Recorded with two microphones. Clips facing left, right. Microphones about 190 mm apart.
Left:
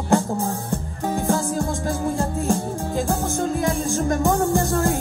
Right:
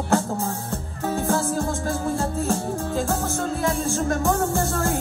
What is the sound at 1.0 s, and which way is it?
Music, 15° left (ahead or behind).